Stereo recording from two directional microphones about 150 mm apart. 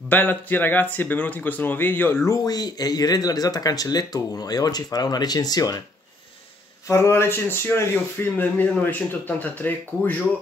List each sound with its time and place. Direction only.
0.1 s speech: 10° left (ahead or behind)
6.9 s speech: 20° left (ahead or behind)